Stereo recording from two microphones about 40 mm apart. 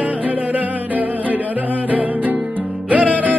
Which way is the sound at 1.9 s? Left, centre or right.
Right.